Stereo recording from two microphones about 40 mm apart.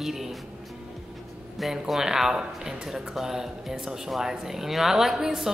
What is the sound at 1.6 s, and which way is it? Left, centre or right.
Speech, centre.